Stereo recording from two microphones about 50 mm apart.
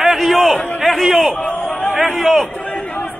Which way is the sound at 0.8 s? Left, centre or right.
Centre.